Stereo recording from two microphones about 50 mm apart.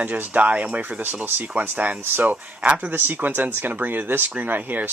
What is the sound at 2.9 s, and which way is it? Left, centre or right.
Speech, right.